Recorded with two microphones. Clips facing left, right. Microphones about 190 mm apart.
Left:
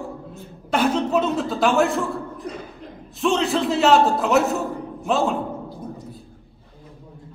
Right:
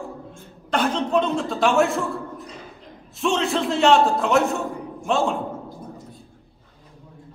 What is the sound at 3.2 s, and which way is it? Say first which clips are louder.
A man's voice: left 2 dB; centre (ahead or behind).